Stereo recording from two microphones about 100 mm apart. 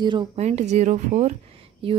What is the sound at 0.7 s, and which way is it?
Speech, 90° right.